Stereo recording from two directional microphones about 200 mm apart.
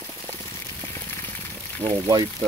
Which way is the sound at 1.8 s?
10° right (ahead or behind).